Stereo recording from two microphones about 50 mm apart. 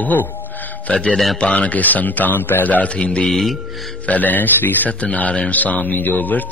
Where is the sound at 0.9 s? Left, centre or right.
Centre.